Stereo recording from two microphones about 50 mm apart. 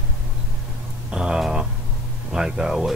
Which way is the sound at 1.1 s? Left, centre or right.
Centre.